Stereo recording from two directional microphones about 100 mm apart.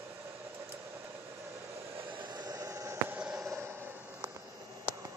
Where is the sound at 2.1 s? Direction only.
45° right (ahead or behind).